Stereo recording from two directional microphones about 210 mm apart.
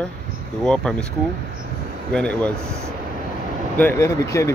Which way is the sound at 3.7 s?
10° left (ahead or behind).